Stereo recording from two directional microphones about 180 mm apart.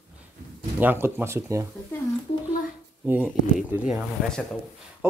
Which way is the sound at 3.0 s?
5° right (ahead or behind).